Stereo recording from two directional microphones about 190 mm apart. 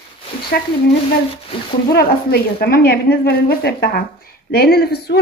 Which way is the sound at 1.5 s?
30° left (ahead or behind).